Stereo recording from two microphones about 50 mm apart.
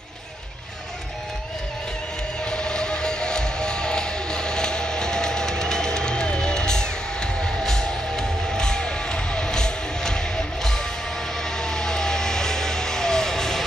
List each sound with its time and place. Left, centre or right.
2.5 s music: centre